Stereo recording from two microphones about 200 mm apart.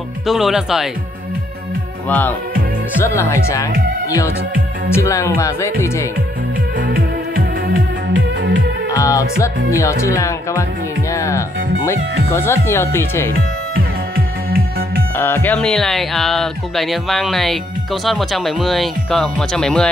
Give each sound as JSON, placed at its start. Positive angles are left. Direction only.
{"t": 0.3, "sound": "speech", "side_deg": 0}
{"t": 2.0, "sound": "speech", "side_deg": 10}
{"t": 4.9, "sound": "speech", "side_deg": 15}
{"t": 6.9, "sound": "music", "side_deg": -50}
{"t": 8.9, "sound": "music", "side_deg": 15}
{"t": 9.7, "sound": "speech", "side_deg": 15}
{"t": 13.3, "sound": "music", "side_deg": -50}
{"t": 15.1, "sound": "speech", "side_deg": 10}